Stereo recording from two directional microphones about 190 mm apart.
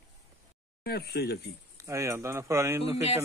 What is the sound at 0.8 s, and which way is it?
Speech, 55° left (ahead or behind).